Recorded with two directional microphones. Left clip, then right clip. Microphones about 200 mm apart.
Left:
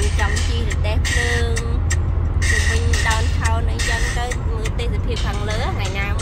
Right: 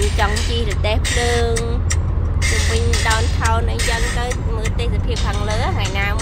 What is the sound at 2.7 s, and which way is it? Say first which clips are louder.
Music: right 2 dB; 15° right (ahead or behind).